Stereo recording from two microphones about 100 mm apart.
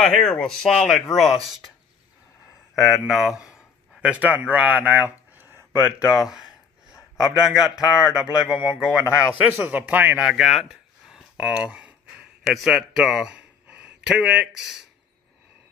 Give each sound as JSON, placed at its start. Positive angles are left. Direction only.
{"t": 0.0, "sound": "speech", "side_deg": 5}
{"t": 2.7, "sound": "speech", "side_deg": -5}
{"t": 5.3, "sound": "a sound", "side_deg": -20}
{"t": 6.1, "sound": "speech", "side_deg": -5}
{"t": 9.6, "sound": "a man's voice", "side_deg": -20}
{"t": 10.2, "sound": "a sound", "side_deg": -5}
{"t": 12.5, "sound": "speech", "side_deg": -5}